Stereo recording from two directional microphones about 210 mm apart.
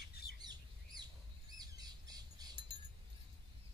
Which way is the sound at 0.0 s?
50° left (ahead or behind).